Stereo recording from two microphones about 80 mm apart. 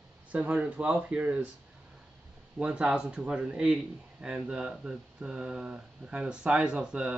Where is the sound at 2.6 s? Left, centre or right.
Centre.